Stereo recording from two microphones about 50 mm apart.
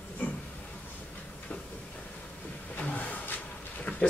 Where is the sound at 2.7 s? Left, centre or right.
Left.